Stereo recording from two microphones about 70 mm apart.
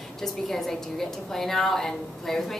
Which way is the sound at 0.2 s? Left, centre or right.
Centre.